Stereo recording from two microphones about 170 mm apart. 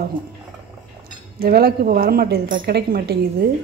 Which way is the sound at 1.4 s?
65° right (ahead or behind).